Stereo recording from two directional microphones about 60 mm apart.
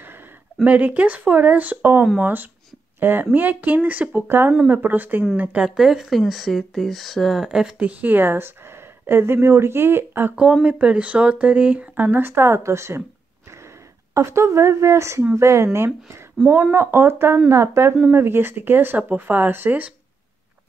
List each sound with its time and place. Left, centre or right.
0.7 s speech: right
4.3 s speech: right
5.7 s speech: centre
7.8 s speech: right
10.6 s speech: centre; by 13.0 s right
14.1 s a woman's voice: right
18.1 s speech: right